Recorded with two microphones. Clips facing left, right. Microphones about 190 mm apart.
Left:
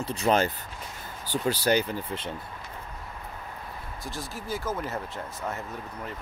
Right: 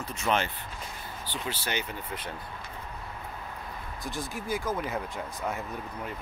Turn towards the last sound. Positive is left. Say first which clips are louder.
# right 1 dB
turn(degrees=-5)  # may be behind; listen again after turning